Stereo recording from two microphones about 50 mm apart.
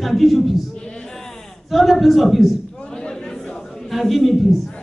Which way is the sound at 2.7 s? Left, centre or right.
Centre.